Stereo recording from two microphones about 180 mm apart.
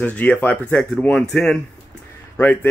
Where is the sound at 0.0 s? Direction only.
10° left (ahead or behind).